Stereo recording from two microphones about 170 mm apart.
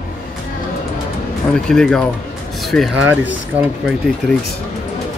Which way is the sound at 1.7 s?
5° left (ahead or behind).